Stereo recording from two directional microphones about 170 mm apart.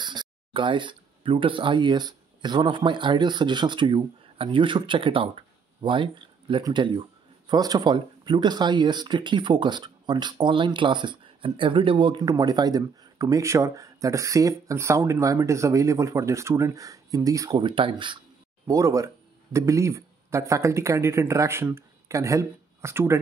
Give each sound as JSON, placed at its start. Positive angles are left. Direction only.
{"t": 0.0, "sound": "speech", "side_deg": -25}
{"t": 18.7, "sound": "speech", "side_deg": -20}